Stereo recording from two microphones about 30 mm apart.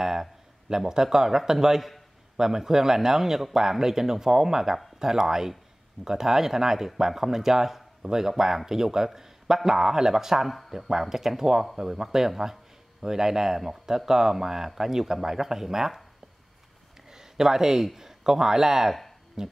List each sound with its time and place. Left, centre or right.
0.0 s speech: centre
17.1 s speech: centre